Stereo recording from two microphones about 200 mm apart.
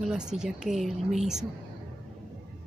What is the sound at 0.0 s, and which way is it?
A woman's voice, 5° right (ahead or behind).